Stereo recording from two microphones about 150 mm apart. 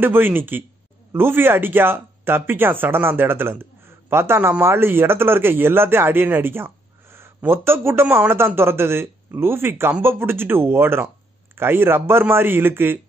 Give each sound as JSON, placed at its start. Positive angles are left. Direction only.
{"t": 0.0, "sound": "a man's voice", "side_deg": -15}